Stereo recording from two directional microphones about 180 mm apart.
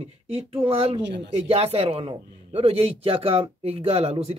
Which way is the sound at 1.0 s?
75° right (ahead or behind).